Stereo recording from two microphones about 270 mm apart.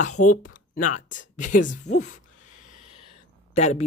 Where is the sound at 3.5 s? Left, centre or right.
Left.